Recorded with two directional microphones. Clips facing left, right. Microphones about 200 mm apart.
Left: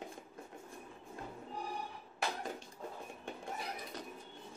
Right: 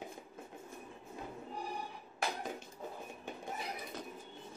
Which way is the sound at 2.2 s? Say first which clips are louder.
Even; 5° right (ahead or behind).